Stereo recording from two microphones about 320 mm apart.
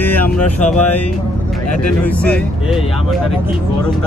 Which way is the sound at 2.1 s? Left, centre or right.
Centre.